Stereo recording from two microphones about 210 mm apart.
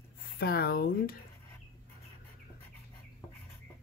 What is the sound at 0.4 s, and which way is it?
Speech, 45° left (ahead or behind).